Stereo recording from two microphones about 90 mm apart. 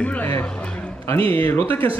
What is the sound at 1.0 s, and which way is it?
Speech, 25° left (ahead or behind).